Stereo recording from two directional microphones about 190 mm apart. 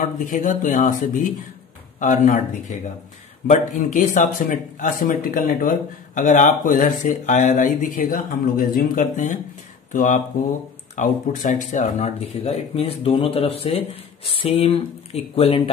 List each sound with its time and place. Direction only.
0.2 s speech: 45° left (ahead or behind)
3.4 s speech: 45° left (ahead or behind)